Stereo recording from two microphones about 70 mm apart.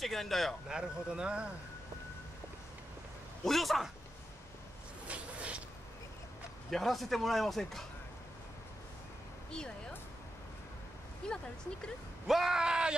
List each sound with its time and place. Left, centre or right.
0.0 s a man's voice: centre
0.7 s speech: centre
3.4 s a man's voice: centre
5.0 s a sound: centre
6.7 s a man's voice: centre
9.5 s speech: centre
11.2 s speech: centre
12.3 s speech: centre